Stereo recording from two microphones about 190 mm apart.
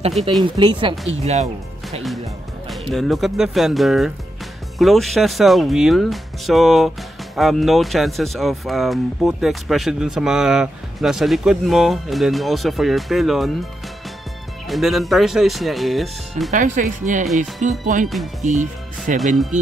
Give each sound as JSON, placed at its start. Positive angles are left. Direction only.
{"t": 0.4, "sound": "speech", "side_deg": -25}
{"t": 1.2, "sound": "speech", "side_deg": -35}
{"t": 2.7, "sound": "speech", "side_deg": 0}
{"t": 14.7, "sound": "speech", "side_deg": 0}
{"t": 16.5, "sound": "speech", "side_deg": -40}